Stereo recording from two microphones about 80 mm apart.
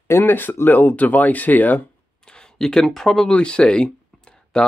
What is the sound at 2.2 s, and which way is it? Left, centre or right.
Speech, centre.